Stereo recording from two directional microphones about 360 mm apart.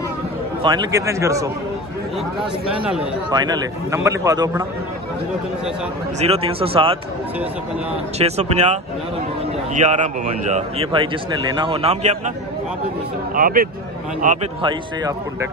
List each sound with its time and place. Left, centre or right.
0.6 s a man's voice: centre
2.9 s a man's voice: centre
6.1 s a man's voice: centre
8.2 s a man's voice: centre
9.8 s a man's voice: centre
13.3 s a man's voice: right